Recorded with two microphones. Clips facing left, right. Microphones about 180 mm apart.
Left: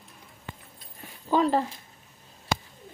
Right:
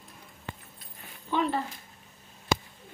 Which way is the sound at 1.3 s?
40° left (ahead or behind).